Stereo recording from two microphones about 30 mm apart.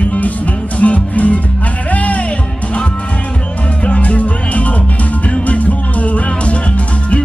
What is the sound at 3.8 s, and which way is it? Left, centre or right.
Music, left.